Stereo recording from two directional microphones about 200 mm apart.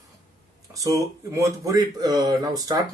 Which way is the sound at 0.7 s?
15° right (ahead or behind).